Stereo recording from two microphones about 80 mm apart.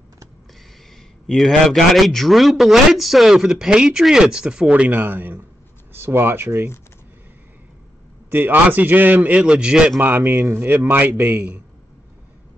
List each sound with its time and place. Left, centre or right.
1.2 s a man's voice: centre; by 6.7 s right
8.3 s a man's voice: right
9.9 s a man's voice: right